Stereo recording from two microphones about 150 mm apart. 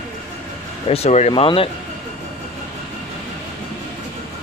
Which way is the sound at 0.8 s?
45° left (ahead or behind).